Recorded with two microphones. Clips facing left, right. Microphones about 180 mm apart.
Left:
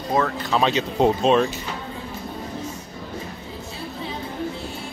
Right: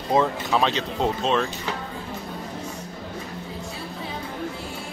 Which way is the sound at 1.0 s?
15° left (ahead or behind).